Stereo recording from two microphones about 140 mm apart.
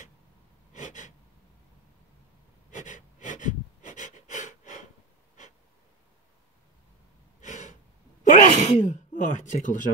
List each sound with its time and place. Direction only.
0.7 s gasp: 65° left (ahead or behind)
2.7 s wheeze: 65° left (ahead or behind)
7.3 s gasp: 65° left (ahead or behind)
8.2 s sneeze: 65° left (ahead or behind)
8.6 s speech: 60° left (ahead or behind)